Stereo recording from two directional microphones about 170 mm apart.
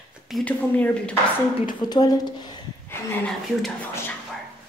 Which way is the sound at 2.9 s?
5° left (ahead or behind).